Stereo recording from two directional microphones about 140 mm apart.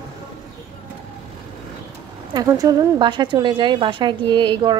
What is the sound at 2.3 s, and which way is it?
Speech, 25° right (ahead or behind).